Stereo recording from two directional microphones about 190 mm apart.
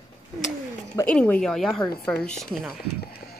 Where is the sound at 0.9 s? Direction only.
10° left (ahead or behind).